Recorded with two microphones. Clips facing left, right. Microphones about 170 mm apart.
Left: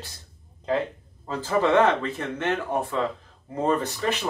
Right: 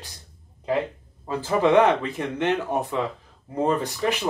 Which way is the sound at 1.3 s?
15° right (ahead or behind).